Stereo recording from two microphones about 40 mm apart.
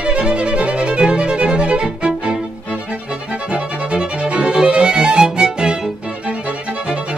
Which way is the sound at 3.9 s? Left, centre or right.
Right.